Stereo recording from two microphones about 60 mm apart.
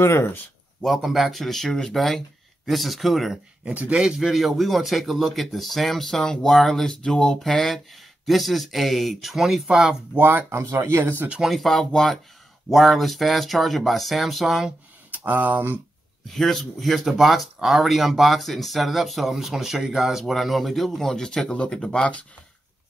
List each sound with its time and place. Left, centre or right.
0.0 s speech: left
0.8 s speech: centre
3.6 s speech: right
3.9 s speech: centre
10.1 s speech: right
10.7 s speech: right
11.0 s speech: right
11.4 s speech: centre
15.1 s speech: right
16.3 s speech: centre